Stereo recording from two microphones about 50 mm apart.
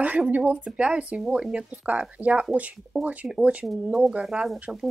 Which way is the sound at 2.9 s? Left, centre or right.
Centre.